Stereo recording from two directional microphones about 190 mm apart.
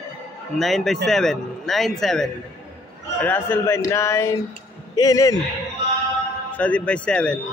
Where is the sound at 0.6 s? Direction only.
Centre (ahead or behind); by 5.3 s 20° left (ahead or behind).